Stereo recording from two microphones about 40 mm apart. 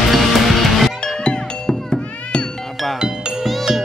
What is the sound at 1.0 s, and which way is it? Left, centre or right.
Music, left.